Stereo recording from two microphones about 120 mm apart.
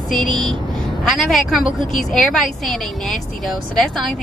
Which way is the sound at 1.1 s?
Centre (ahead or behind).